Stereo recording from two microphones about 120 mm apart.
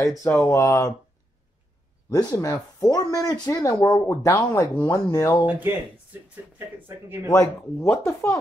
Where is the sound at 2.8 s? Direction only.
30° left (ahead or behind).